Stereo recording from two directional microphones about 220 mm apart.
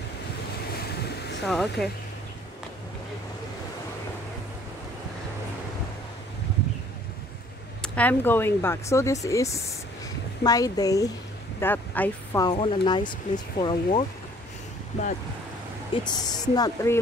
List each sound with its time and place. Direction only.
1.4 s speech: centre (ahead or behind)
7.8 s speech: 5° left (ahead or behind); by 14.0 s 25° left (ahead or behind)
16.0 s speech: 20° left (ahead or behind)